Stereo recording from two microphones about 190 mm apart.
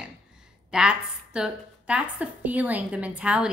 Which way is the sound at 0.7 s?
5° right (ahead or behind).